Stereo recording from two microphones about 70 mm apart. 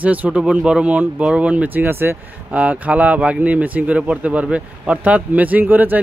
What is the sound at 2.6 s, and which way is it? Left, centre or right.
Speech, centre.